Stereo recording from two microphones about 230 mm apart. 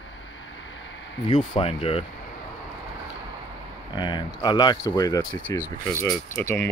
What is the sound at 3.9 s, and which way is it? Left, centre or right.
Speech, centre.